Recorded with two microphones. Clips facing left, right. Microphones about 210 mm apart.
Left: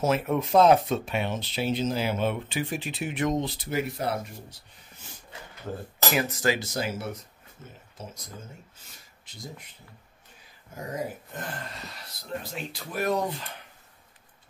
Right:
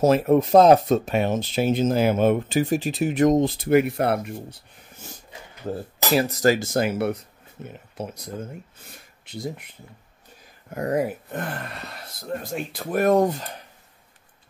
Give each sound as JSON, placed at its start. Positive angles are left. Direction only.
{"t": 0.0, "sound": "speech", "side_deg": -40}
{"t": 6.1, "sound": "speech", "side_deg": -35}
{"t": 10.7, "sound": "speech", "side_deg": -65}